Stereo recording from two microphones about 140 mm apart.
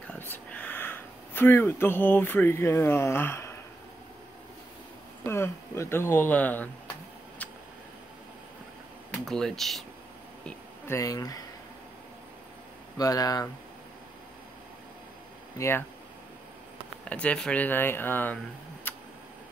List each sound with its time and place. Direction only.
0.1 s a sound: 10° left (ahead or behind)
5.2 s speech: 20° left (ahead or behind)
9.2 s speech: centre (ahead or behind)
10.9 s speech: 25° left (ahead or behind)
12.9 s speech: 25° left (ahead or behind)
15.5 s speech: 20° left (ahead or behind)
17.1 s speech: 10° left (ahead or behind)